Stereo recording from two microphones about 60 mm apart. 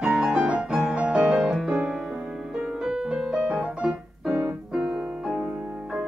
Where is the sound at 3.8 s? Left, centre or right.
Centre.